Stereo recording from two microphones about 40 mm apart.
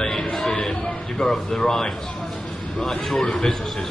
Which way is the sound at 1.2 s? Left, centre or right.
Centre.